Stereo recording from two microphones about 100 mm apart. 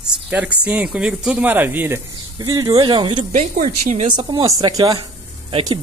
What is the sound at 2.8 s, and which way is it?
Speech, 55° right (ahead or behind).